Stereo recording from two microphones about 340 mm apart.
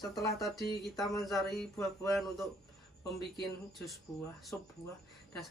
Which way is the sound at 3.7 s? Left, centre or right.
Centre.